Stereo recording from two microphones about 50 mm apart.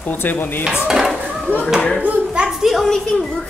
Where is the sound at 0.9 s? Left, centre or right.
Centre.